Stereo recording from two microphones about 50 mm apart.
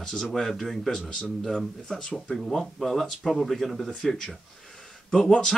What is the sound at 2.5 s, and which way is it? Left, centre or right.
Speech, centre.